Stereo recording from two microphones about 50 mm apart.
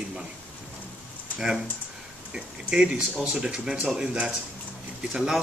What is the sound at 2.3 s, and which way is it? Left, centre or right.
Speech, centre.